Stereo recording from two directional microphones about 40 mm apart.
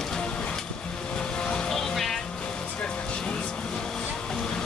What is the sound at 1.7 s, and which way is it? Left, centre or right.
Music, centre.